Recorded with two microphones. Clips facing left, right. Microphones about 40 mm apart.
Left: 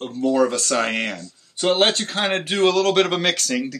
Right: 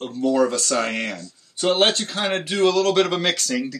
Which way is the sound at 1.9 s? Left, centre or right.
Left.